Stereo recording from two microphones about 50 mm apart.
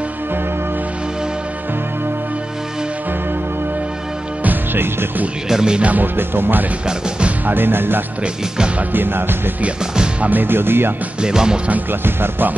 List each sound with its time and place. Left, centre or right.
4.4 s music: right
5.5 s speech: centre
5.8 s speech: right
6.1 s speech: right
6.9 s speech: right
7.4 s speech: right
8.2 s speech: right
8.9 s speech: right
11.1 s speech: centre
11.7 s speech: right